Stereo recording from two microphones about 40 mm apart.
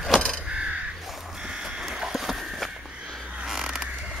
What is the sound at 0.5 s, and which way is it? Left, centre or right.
Crow, right.